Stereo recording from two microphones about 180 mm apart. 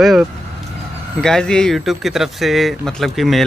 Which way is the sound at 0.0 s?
Centre (ahead or behind).